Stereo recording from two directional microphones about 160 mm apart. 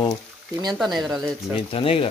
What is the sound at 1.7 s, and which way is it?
Speech, 35° left (ahead or behind).